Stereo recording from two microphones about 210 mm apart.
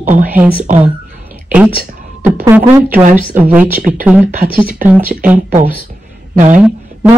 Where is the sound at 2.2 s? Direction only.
10° right (ahead or behind).